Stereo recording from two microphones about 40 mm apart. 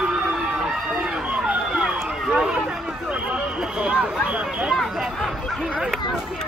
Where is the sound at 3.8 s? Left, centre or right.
Right.